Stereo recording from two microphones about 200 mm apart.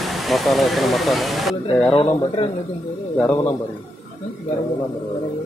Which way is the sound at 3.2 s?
10° left (ahead or behind).